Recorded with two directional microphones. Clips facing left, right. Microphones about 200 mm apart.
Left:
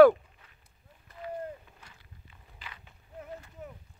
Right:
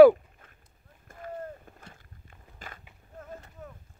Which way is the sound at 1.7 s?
50° right (ahead or behind).